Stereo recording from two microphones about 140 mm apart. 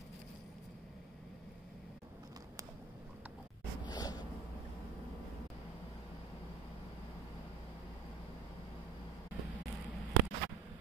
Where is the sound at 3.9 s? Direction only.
30° left (ahead or behind).